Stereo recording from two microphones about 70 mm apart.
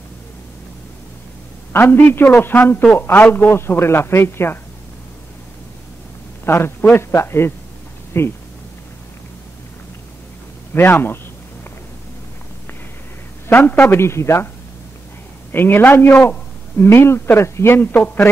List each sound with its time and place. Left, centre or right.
1.7 s a man's voice: left
6.4 s a man's voice: left
10.7 s a man's voice: left
13.7 s a man's voice: left
15.5 s a man's voice: left